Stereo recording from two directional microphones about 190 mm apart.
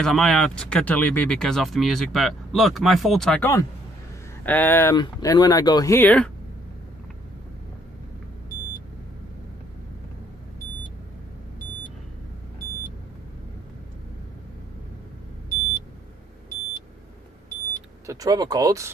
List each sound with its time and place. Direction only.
0.0 s speech: centre (ahead or behind)
18.0 s speech: 20° right (ahead or behind)